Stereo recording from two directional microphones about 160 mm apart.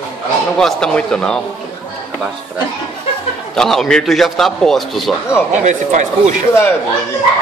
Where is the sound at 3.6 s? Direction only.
5° left (ahead or behind).